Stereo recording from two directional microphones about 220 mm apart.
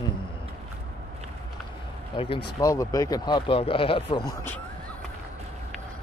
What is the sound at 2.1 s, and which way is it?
Speech, 25° left (ahead or behind).